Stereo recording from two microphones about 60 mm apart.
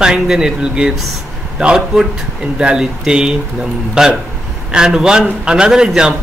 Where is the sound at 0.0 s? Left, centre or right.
Centre.